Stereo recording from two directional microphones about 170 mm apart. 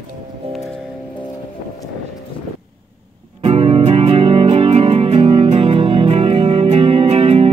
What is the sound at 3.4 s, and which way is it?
Music, 35° right (ahead or behind).